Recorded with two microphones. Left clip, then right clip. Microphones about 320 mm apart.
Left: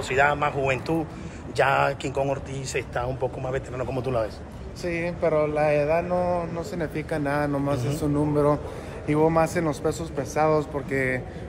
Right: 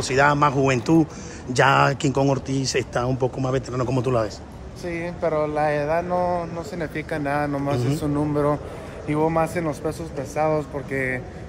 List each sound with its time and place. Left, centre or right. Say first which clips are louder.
0.0 s speech: right 4 dB; right
4.8 s speech: even; centre